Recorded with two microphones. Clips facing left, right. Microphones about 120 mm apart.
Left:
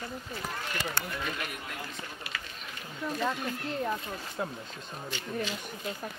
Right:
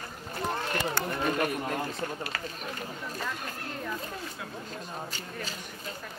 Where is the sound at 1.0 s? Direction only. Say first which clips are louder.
Right 8 dB; 40° right (ahead or behind).